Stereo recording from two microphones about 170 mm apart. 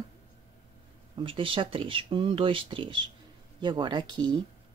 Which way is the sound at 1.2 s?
30° right (ahead or behind).